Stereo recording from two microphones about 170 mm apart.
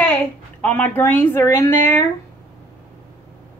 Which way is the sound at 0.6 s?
10° left (ahead or behind).